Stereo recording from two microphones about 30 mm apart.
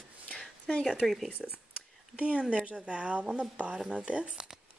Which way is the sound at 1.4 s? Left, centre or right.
Centre.